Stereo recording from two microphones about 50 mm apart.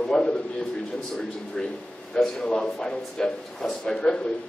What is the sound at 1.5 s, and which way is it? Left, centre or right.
A man's voice, centre.